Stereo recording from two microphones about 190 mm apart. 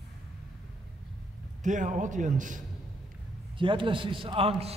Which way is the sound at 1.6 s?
40° right (ahead or behind).